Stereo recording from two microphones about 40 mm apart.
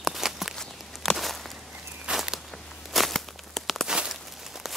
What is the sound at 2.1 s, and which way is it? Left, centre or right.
Walk, right.